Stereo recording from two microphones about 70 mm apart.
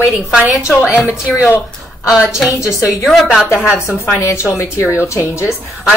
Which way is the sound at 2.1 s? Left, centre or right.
Centre.